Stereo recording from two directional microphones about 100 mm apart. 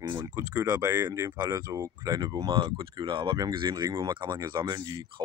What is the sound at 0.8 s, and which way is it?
Speech, 25° right (ahead or behind).